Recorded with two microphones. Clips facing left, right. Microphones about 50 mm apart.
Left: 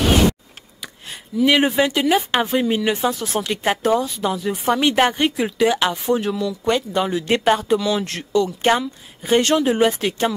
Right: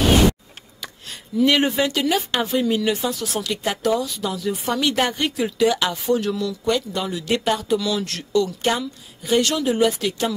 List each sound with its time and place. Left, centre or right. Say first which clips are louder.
1.0 s a woman's voice: left 1 dB; centre
6.6 s speech: left 4 dB; left